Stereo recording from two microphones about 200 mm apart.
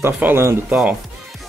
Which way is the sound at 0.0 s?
10° right (ahead or behind).